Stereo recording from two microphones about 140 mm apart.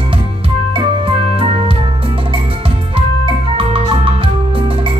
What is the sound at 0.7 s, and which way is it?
Organ, 40° right (ahead or behind).